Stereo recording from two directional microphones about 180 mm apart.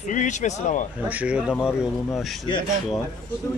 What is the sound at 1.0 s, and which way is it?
Speech, 10° right (ahead or behind).